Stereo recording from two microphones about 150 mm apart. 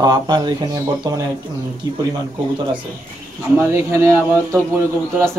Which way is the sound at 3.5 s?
15° right (ahead or behind).